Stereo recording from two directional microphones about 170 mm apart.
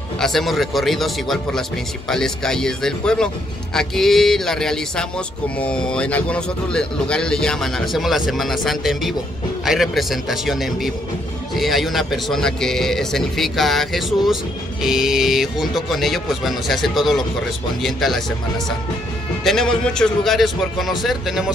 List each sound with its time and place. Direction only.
0.2 s a man's voice: centre (ahead or behind)
19.4 s a man's voice: 5° left (ahead or behind)